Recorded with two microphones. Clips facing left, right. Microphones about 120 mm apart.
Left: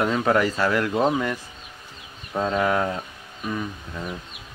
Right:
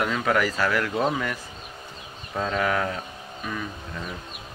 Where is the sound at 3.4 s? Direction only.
20° left (ahead or behind).